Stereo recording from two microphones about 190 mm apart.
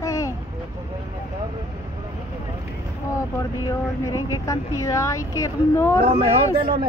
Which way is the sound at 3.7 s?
15° left (ahead or behind).